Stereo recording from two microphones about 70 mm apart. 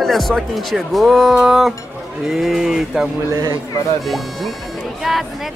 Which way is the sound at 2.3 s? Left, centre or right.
Centre.